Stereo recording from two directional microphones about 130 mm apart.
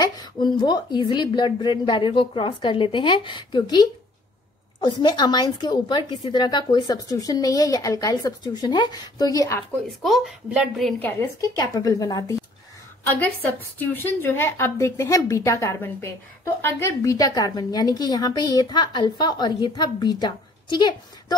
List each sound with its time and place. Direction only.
0.0 s a woman's voice: 30° left (ahead or behind)
9.8 s speech: centre (ahead or behind)
11.0 s a woman's voice: 15° left (ahead or behind)
11.4 s a woman's voice: 30° left (ahead or behind)
13.7 s a woman's voice: 15° left (ahead or behind); by 21.4 s 35° left (ahead or behind)